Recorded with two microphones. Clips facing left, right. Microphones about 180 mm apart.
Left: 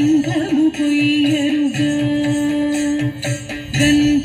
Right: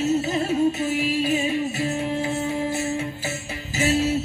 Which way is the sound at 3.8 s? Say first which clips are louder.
Left 9 dB; 75° left (ahead or behind).